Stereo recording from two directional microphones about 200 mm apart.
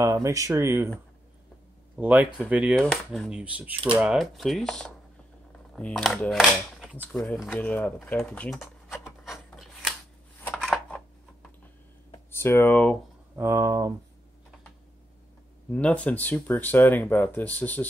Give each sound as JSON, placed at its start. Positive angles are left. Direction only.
{"t": 0.0, "sound": "speech", "side_deg": -15}
{"t": 2.0, "sound": "speech", "side_deg": -5}
{"t": 9.2, "sound": "filing", "side_deg": 0}
{"t": 10.4, "sound": "a sound", "side_deg": 5}
{"t": 12.1, "sound": "speech", "side_deg": 10}
{"t": 13.4, "sound": "speech", "side_deg": -15}
{"t": 15.7, "sound": "speech", "side_deg": 5}